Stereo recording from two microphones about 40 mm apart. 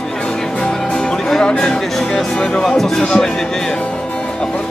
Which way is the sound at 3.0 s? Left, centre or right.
Centre.